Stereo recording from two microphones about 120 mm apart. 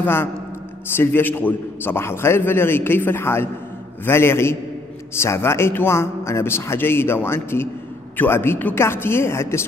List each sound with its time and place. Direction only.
0.0 s a man's voice: 20° left (ahead or behind)